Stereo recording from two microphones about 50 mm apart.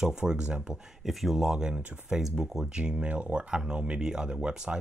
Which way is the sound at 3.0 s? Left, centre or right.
Right.